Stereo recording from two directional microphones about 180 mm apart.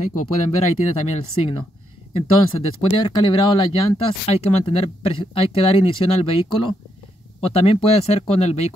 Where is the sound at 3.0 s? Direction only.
25° left (ahead or behind).